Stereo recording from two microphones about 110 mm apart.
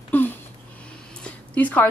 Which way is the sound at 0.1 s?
15° left (ahead or behind).